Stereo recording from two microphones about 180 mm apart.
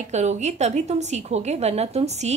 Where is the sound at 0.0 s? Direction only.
40° right (ahead or behind).